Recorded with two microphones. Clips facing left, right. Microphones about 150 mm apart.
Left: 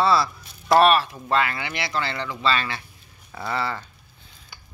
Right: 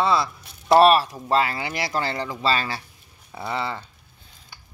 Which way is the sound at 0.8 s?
35° right (ahead or behind).